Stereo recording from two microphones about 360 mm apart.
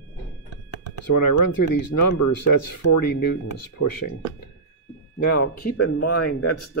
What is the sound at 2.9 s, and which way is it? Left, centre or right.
Speech, left.